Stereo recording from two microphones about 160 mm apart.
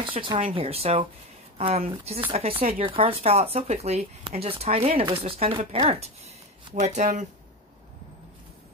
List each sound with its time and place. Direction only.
0.0 s speech: 30° right (ahead or behind); by 7.2 s 50° right (ahead or behind)